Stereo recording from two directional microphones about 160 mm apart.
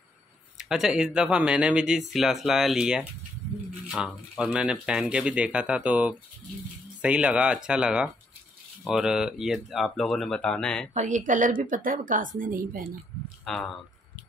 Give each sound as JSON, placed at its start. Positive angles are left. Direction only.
{"t": 0.6, "sound": "speech", "side_deg": 0}
{"t": 10.9, "sound": "a woman's voice", "side_deg": -50}
{"t": 13.5, "sound": "speech", "side_deg": 5}